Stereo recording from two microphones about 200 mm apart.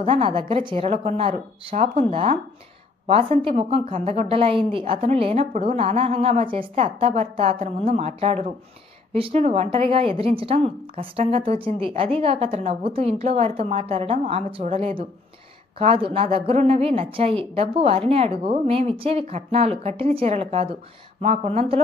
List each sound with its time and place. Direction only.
0.0 s a woman's voice: 25° right (ahead or behind)